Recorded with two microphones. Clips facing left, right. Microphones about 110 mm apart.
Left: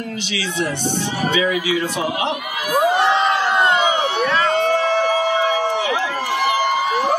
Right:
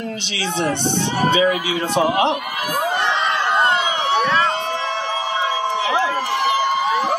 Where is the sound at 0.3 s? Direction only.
30° right (ahead or behind).